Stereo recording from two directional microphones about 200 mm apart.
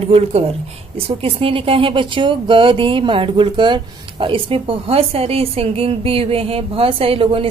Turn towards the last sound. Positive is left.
turn(degrees=-25)  # may be behind; listen again after turning